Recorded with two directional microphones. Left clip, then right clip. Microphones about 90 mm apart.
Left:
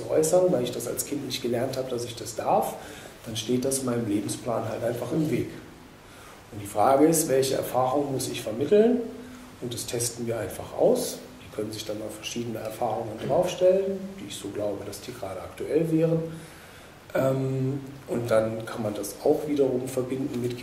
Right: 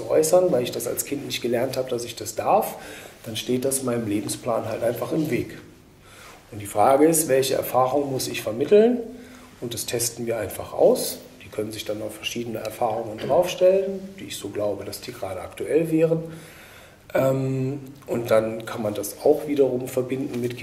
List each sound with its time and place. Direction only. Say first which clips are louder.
0.1 s speech: right 3 dB; 35° right (ahead or behind)
6.7 s speech: right 3 dB; 25° right (ahead or behind)
17.1 s a man's voice: right 4 dB; 30° right (ahead or behind)